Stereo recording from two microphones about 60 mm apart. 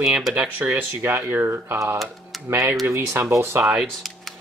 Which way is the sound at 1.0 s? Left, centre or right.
Right.